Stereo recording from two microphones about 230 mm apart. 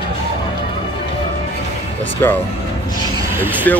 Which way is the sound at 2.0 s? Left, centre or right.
Centre.